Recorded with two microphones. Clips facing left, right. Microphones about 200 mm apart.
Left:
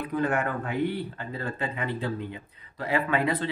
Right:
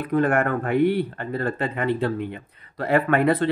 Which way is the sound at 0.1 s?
60° right (ahead or behind).